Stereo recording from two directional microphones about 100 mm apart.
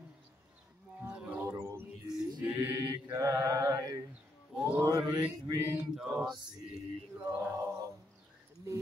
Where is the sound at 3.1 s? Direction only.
30° right (ahead or behind).